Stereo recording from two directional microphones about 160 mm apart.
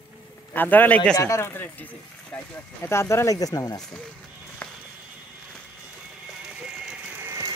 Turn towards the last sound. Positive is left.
turn(degrees=-20)  # may be behind; listen again after turning